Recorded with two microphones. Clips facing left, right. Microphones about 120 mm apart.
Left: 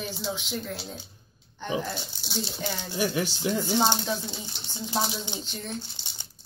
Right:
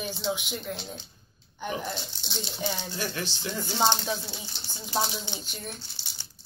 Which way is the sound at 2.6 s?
15° right (ahead or behind).